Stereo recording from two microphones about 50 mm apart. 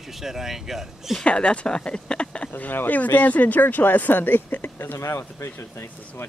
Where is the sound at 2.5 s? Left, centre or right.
Left.